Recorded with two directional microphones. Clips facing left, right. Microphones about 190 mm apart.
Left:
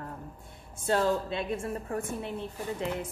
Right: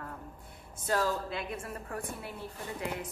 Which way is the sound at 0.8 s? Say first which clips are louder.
Left 4 dB; 25° left (ahead or behind).